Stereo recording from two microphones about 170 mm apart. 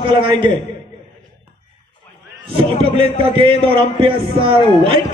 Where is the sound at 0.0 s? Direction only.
30° right (ahead or behind).